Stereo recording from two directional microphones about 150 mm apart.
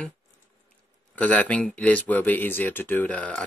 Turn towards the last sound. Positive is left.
turn(degrees=10)  # may be behind; listen again after turning